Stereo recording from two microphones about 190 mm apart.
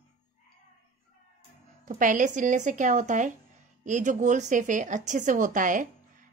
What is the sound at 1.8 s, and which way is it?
A woman's voice, 45° right (ahead or behind).